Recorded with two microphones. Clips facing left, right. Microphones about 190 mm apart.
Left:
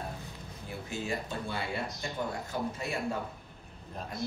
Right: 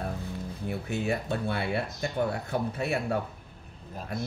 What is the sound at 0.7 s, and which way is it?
Speech, 65° right (ahead or behind).